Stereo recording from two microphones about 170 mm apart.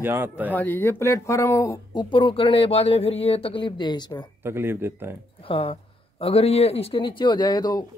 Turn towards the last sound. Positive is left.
turn(degrees=20)  # may be behind; listen again after turning